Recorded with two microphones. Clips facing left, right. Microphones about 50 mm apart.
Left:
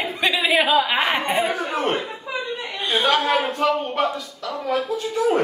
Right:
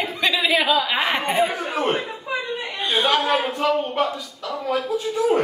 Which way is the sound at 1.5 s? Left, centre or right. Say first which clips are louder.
Left 1 dB; right.